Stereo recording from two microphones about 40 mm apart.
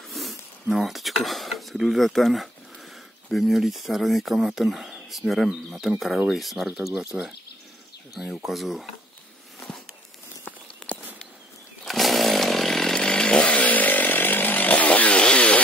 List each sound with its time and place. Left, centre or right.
0.1 s a sound: centre
0.7 s speech: centre
5.5 s speech: centre
8.3 s speech: centre
10.8 s a sound: centre
11.8 s chainsaw: centre; by 15.1 s left
15.1 s chainsaw: left